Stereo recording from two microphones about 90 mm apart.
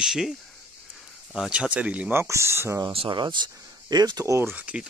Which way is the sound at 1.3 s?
10° right (ahead or behind).